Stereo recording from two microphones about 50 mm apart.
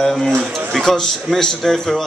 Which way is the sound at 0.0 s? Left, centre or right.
Centre.